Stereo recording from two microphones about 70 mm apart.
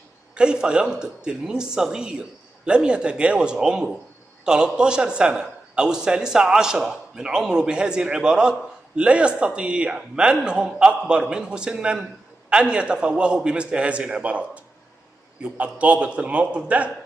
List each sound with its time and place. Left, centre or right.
0.3 s a man's voice: centre